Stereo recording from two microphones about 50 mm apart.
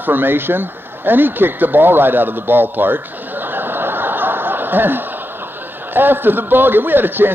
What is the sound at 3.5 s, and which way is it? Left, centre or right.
Snicker, right.